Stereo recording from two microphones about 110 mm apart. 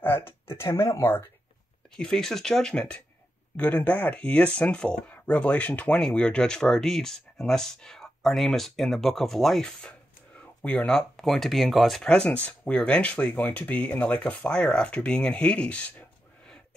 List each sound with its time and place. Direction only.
0.0 s speech: 20° left (ahead or behind)
2.0 s speech: 5° left (ahead or behind)